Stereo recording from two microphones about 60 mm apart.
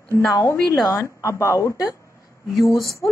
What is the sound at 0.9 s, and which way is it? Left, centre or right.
Speech, left.